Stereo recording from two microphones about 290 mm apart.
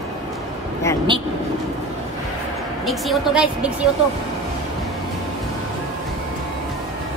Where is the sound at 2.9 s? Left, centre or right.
Centre.